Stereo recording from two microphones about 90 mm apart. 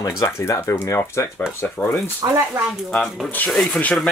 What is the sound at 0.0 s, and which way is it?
Speech, 40° left (ahead or behind).